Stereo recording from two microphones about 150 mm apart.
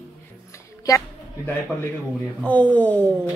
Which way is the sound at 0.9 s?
20° left (ahead or behind).